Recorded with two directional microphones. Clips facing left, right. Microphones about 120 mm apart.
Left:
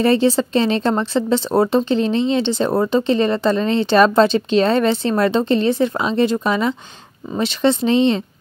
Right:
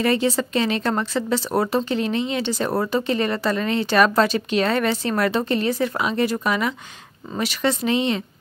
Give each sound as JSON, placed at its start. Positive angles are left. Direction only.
{"t": 0.0, "sound": "speech", "side_deg": 30}